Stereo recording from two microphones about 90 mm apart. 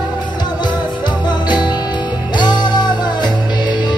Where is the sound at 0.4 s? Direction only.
55° left (ahead or behind).